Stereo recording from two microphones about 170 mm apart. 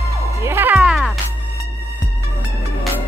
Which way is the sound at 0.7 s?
Centre (ahead or behind).